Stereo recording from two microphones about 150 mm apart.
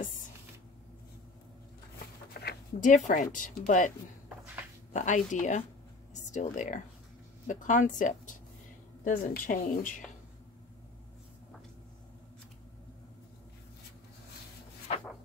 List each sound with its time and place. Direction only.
2.3 s a sound: 75° left (ahead or behind)
3.1 s speech: 60° left (ahead or behind)
4.9 s speech: 55° left (ahead or behind)
9.0 s speech: 70° left (ahead or behind)